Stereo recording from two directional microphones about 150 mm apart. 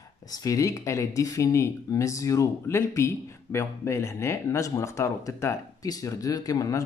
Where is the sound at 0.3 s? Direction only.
20° left (ahead or behind).